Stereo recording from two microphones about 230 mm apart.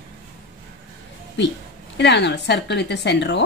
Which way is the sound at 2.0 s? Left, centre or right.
Left.